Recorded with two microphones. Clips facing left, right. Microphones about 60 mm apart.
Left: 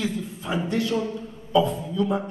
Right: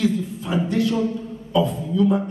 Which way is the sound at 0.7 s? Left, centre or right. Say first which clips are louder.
Right 3 dB; left.